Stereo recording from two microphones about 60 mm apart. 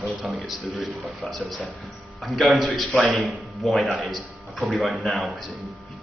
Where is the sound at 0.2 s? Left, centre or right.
Centre.